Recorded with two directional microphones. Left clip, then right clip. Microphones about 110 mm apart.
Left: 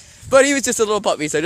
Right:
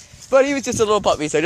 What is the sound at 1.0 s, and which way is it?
Speech, 40° left (ahead or behind).